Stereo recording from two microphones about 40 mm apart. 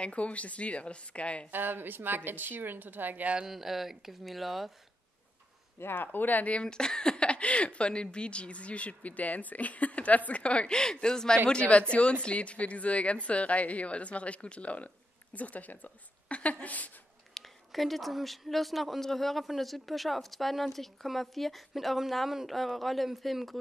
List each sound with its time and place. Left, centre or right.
0.0 s speech: left
1.5 s speech: right
3.4 s speech: centre
5.8 s speech: left
6.5 s speech: left
10.7 s speech: centre; by 15.9 s left
16.3 s a woman's voice: left
17.3 s speech: centre